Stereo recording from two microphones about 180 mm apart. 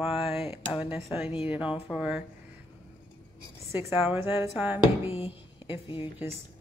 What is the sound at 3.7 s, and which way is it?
A woman's voice, 15° right (ahead or behind).